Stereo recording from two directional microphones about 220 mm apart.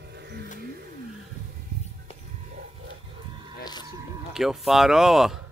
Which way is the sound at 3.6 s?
20° left (ahead or behind).